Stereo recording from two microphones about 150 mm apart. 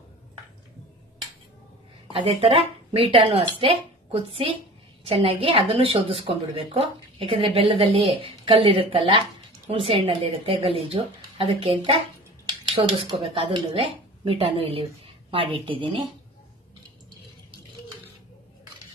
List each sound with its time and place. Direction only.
2.1 s a woman's voice: 40° right (ahead or behind)